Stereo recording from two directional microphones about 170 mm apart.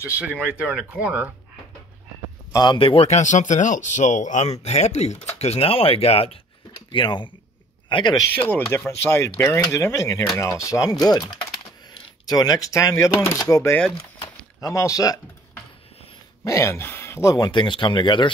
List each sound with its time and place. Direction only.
0.9 s speech: 10° right (ahead or behind)
2.5 s speech: 25° left (ahead or behind)
8.4 s speech: 10° left (ahead or behind)
14.2 s a sound: 20° left (ahead or behind)
16.4 s speech: 15° left (ahead or behind)